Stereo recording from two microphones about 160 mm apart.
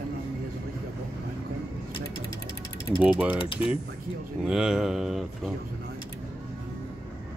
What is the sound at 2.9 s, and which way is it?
Speech, 5° right (ahead or behind).